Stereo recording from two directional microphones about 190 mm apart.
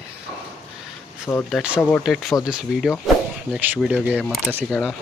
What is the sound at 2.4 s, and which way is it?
Speech, 5° right (ahead or behind).